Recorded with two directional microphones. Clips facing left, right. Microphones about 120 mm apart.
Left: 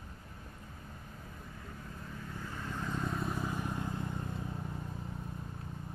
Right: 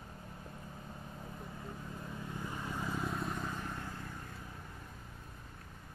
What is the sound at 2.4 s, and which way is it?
Vehicle, 15° right (ahead or behind).